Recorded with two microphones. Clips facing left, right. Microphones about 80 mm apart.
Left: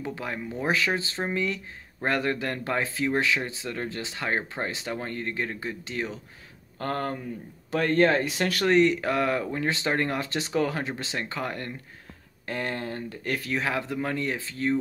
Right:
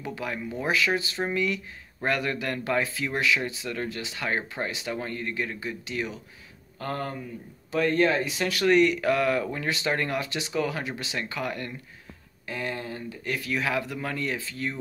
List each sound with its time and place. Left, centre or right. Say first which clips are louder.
0.0 s speech: even; left
6.8 s speech: left 2 dB; left
8.6 s speech: right 1 dB; left
12.4 s speech: left 2 dB; left
13.5 s speech: right 1 dB; left